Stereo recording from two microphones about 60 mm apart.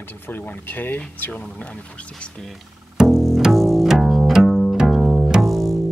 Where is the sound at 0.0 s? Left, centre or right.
Left; by 2.4 s centre.